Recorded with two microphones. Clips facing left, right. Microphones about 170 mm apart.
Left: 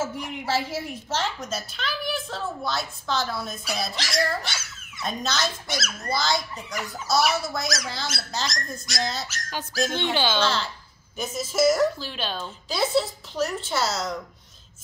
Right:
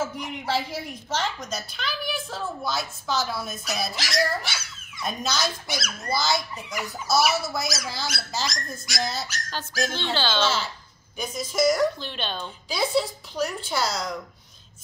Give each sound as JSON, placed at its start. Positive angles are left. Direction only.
{"t": 0.0, "sound": "speech", "side_deg": 5}
{"t": 9.8, "sound": "speech", "side_deg": 15}
{"t": 10.4, "sound": "speech", "side_deg": -5}
{"t": 11.1, "sound": "speech", "side_deg": 5}